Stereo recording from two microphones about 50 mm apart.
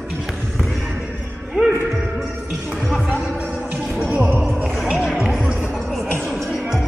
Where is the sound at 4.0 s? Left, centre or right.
Right.